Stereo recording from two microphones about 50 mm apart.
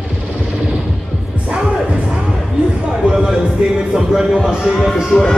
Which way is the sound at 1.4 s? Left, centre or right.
Right.